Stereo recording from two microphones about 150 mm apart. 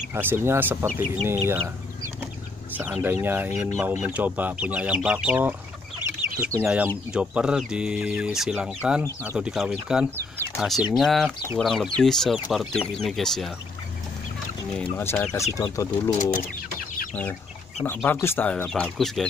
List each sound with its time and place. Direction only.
0.1 s speech: 15° right (ahead or behind)
2.7 s speech: 10° right (ahead or behind)
6.0 s chicken: 15° right (ahead or behind)
7.1 s speech: 5° right (ahead or behind)
14.8 s speech: 10° left (ahead or behind)
16.1 s speech: 55° left (ahead or behind)
17.1 s speech: 10° left (ahead or behind)